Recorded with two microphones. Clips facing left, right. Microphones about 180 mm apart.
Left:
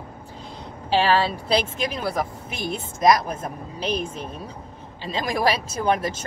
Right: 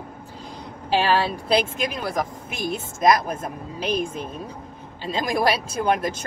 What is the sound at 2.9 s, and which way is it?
Speech, 5° right (ahead or behind).